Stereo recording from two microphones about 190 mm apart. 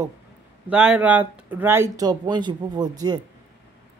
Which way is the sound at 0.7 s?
5° right (ahead or behind).